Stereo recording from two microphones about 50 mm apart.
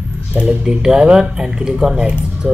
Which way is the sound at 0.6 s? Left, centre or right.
Centre.